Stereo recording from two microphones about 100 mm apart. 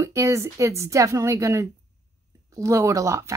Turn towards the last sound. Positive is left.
turn(degrees=-30)  # may be behind; listen again after turning